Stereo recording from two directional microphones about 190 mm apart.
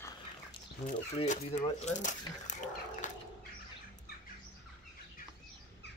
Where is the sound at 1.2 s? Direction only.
35° left (ahead or behind).